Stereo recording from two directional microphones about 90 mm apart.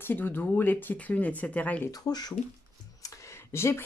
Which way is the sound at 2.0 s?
45° left (ahead or behind).